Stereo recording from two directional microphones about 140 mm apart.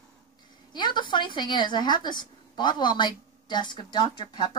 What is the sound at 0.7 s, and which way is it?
A woman's voice, 30° left (ahead or behind).